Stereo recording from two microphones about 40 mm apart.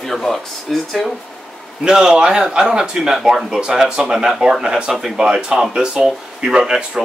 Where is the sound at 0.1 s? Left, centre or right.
Centre.